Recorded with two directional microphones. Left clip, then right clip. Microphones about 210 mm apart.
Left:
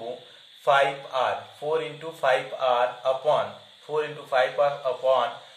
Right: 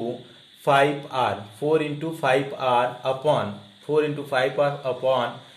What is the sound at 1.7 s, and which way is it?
Speech, 35° right (ahead or behind).